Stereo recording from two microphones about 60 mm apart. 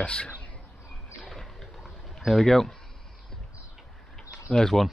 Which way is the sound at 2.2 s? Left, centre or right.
Centre.